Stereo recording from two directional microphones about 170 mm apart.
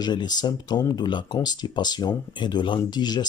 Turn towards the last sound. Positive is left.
turn(degrees=25)  # may be behind; listen again after turning